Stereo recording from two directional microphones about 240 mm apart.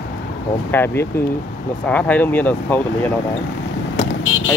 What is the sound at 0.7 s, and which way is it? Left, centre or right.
Speech, centre.